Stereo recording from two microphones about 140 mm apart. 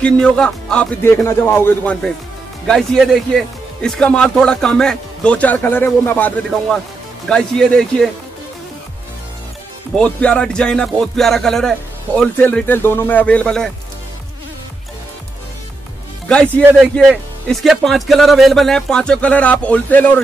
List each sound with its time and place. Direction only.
0.0 s speech: 5° left (ahead or behind)
1.1 s speech: 15° left (ahead or behind)
9.9 s speech: 10° left (ahead or behind)
12.4 s speech: 15° left (ahead or behind)
16.7 s speech: centre (ahead or behind)